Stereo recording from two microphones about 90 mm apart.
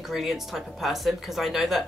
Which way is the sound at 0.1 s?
5° right (ahead or behind).